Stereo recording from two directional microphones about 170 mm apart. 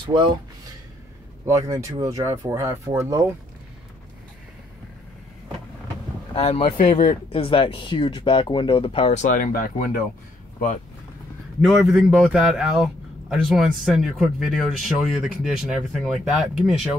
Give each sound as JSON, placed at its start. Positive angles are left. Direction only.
{"t": 0.0, "sound": "speech", "side_deg": -30}
{"t": 1.7, "sound": "speech", "side_deg": -20}
{"t": 6.3, "sound": "speech", "side_deg": 35}
{"t": 11.6, "sound": "a man's voice", "side_deg": 0}